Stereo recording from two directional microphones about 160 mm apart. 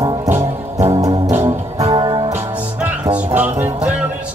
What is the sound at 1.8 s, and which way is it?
Music, 30° right (ahead or behind).